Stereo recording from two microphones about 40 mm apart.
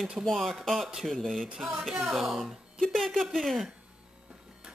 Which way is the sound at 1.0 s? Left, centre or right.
Centre.